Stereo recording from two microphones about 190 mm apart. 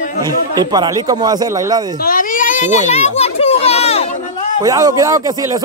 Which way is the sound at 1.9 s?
50° left (ahead or behind).